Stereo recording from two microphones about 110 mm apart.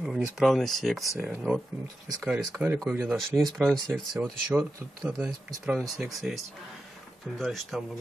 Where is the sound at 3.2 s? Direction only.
Centre (ahead or behind).